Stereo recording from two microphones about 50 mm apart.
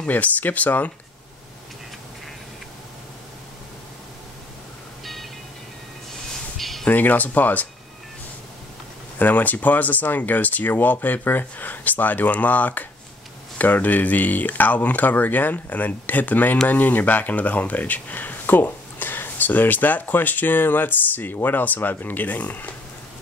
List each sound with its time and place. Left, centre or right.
0.1 s speech: left
6.6 s a sound: centre
6.9 s speech: left
9.2 s speech: left